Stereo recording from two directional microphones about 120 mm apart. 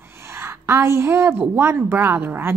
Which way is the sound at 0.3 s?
20° right (ahead or behind).